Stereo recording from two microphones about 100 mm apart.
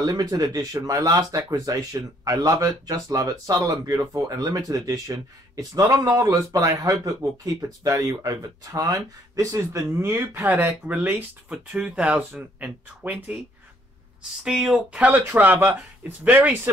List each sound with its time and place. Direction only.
0.0 s speech: 35° right (ahead or behind); by 13.4 s 15° right (ahead or behind)
14.4 s speech: 5° right (ahead or behind)